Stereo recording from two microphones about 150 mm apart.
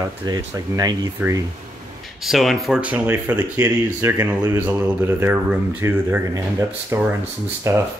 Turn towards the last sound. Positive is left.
turn(degrees=-20)  # may be behind; listen again after turning